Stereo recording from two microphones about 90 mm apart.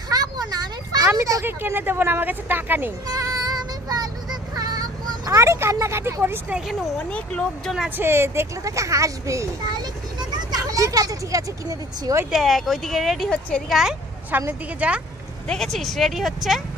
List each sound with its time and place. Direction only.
0.1 s a sound: 45° right (ahead or behind)
1.4 s speech: 25° right (ahead or behind)
3.2 s child singing: 45° right (ahead or behind)
5.3 s a woman's voice: 30° right (ahead or behind)
7.1 s speech: 10° left (ahead or behind)
8.0 s a woman's voice: 25° right (ahead or behind)
10.3 s vehicle: 45° right (ahead or behind)
12.3 s speech: centre (ahead or behind)
14.3 s speech: 20° right (ahead or behind)
15.4 s speech: 5° left (ahead or behind)